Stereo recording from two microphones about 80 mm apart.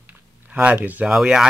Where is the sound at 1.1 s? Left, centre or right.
Centre.